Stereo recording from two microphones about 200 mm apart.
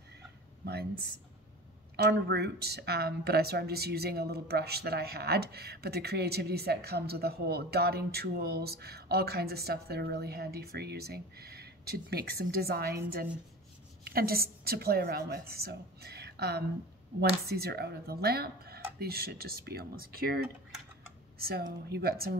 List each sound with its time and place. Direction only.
0.7 s speech: 55° right (ahead or behind)
21.4 s speech: 50° right (ahead or behind)